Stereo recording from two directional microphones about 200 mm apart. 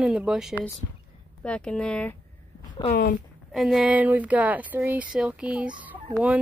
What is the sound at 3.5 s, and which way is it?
Speech, centre (ahead or behind).